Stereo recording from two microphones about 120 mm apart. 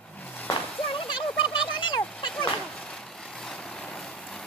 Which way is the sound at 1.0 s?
45° left (ahead or behind).